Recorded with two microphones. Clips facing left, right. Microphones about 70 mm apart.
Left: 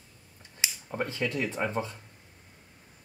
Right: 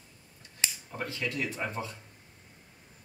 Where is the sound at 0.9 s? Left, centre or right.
Left.